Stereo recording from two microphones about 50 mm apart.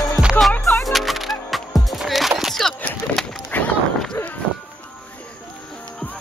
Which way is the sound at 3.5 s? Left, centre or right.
Left.